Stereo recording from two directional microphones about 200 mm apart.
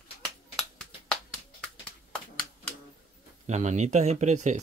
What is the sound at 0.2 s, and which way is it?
Finger snapping, 5° left (ahead or behind).